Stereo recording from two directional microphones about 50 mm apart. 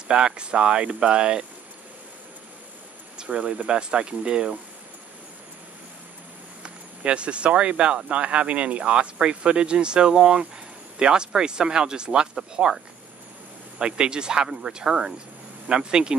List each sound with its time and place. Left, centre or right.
0.1 s speech: centre
3.2 s speech: centre
6.6 s speech: right